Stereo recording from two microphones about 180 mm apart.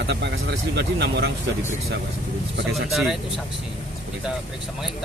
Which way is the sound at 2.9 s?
Centre (ahead or behind).